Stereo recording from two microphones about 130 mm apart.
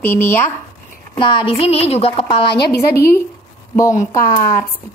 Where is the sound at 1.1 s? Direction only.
40° left (ahead or behind).